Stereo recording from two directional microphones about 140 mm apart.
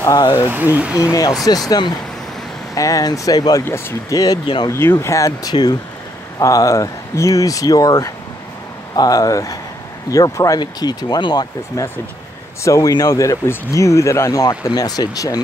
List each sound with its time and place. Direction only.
0.0 s speech: 25° left (ahead or behind)
0.5 s speech: 15° right (ahead or behind)
1.7 s speech: 30° left (ahead or behind)
4.7 s speech: 15° left (ahead or behind)